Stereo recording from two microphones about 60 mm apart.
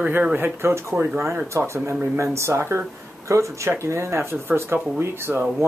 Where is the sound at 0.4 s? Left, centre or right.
Right.